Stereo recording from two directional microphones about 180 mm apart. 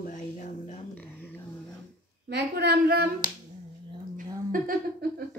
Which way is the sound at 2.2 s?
65° right (ahead or behind).